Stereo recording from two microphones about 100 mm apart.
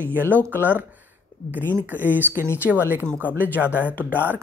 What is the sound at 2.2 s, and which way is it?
Speech, 20° right (ahead or behind).